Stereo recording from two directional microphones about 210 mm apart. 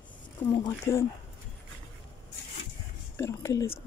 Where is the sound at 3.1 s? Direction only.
15° left (ahead or behind).